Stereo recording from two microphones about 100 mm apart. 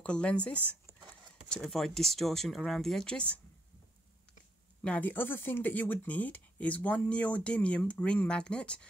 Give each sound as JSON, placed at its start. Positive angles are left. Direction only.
{"t": 0.0, "sound": "speech", "side_deg": 10}
{"t": 1.7, "sound": "speech", "side_deg": 5}
{"t": 4.8, "sound": "speech", "side_deg": 15}